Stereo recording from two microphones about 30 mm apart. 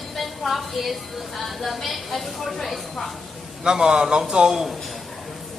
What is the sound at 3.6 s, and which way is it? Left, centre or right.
Speech, right.